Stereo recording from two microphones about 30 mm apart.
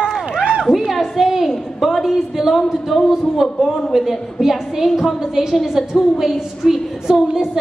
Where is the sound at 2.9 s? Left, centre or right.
Centre.